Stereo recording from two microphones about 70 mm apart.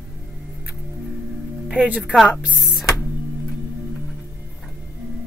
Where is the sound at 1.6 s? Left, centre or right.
Centre.